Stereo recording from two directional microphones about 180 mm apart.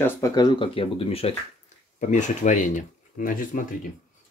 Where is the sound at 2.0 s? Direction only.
45° left (ahead or behind).